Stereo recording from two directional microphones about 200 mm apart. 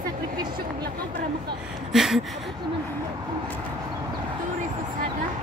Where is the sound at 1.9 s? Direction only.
Centre (ahead or behind).